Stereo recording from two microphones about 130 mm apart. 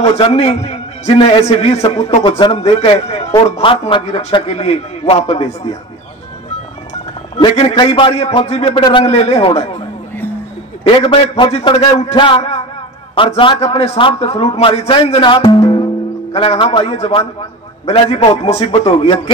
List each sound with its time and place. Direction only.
0.0 s a man's voice: 50° left (ahead or behind)
1.1 s a man's voice: 40° left (ahead or behind)
1.4 s a man's voice: 55° left (ahead or behind)
4.0 s a man's voice: 55° left (ahead or behind)
7.3 s a man's voice: 45° left (ahead or behind)
8.7 s a man's voice: 35° left (ahead or behind)
9.0 s a man's voice: 50° left (ahead or behind)
10.8 s a man's voice: 40° left (ahead or behind)